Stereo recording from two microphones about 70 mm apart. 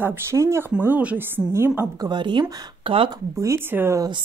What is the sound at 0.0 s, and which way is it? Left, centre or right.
Speech, right.